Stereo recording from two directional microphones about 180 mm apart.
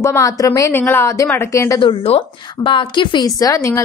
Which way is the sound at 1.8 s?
30° left (ahead or behind).